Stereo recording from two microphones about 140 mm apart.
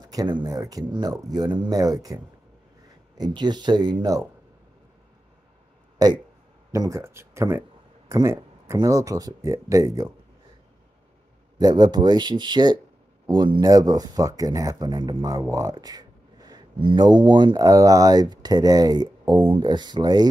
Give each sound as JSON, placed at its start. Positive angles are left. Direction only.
{"t": 0.0, "sound": "speech", "side_deg": -25}
{"t": 3.2, "sound": "speech", "side_deg": -30}
{"t": 5.9, "sound": "speech", "side_deg": -30}
{"t": 8.1, "sound": "a sound", "side_deg": -20}
{"t": 8.7, "sound": "speech", "side_deg": -25}
{"t": 11.5, "sound": "speech", "side_deg": -30}